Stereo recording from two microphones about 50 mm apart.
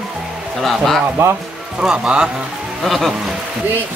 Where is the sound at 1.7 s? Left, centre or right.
Right.